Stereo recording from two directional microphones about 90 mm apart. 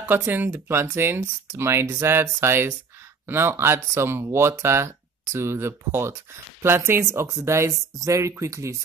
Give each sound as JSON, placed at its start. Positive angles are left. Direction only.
{"t": 0.0, "sound": "speech", "side_deg": -20}